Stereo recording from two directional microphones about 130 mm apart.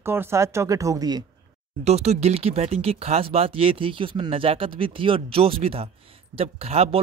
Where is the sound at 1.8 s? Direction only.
55° right (ahead or behind).